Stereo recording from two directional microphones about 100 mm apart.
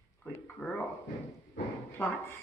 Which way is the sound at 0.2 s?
10° left (ahead or behind).